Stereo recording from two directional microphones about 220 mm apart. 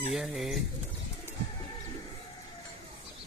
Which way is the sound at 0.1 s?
Centre (ahead or behind).